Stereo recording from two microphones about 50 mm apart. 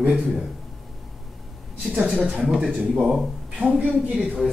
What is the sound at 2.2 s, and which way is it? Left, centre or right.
Speech, centre.